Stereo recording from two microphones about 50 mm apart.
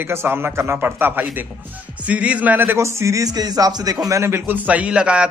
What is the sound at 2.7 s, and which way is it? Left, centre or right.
Speech, right.